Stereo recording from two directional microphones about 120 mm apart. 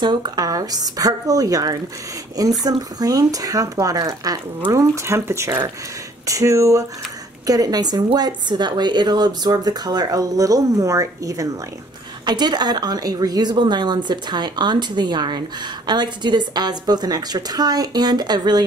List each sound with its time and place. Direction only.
0.0 s a woman's voice: 35° right (ahead or behind)